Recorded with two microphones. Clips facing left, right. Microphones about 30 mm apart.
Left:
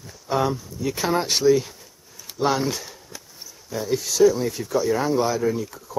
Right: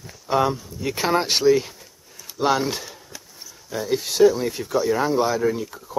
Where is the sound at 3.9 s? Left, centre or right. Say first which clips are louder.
Right 1 dB; right.